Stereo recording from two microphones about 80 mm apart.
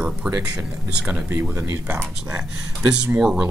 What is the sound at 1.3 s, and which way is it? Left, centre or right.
Speech, right.